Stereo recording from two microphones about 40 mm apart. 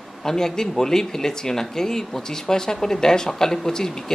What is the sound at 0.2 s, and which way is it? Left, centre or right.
Speech, centre.